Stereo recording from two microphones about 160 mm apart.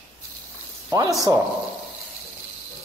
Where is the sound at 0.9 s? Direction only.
20° right (ahead or behind).